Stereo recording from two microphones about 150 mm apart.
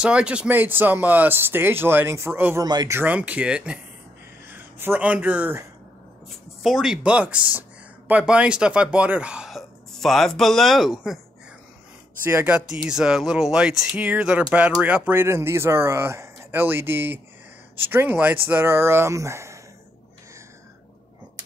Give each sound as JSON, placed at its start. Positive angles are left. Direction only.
{"t": 0.0, "sound": "speech", "side_deg": -5}
{"t": 2.6, "sound": "speech", "side_deg": -25}
{"t": 3.0, "sound": "speech", "side_deg": -10}
{"t": 6.6, "sound": "speech", "side_deg": 0}
{"t": 12.2, "sound": "speech", "side_deg": -15}